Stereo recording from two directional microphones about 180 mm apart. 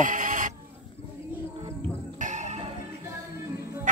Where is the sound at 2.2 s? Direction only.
40° right (ahead or behind).